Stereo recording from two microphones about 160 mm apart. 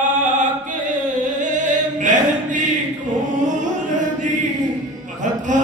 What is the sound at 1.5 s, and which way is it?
Choir, 50° right (ahead or behind).